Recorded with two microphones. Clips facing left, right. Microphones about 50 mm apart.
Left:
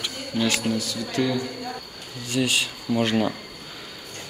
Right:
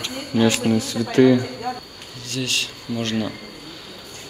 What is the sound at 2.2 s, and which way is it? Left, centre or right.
Speech, centre.